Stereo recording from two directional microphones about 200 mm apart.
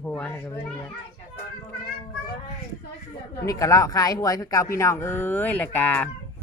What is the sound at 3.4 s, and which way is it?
Speech, 15° left (ahead or behind).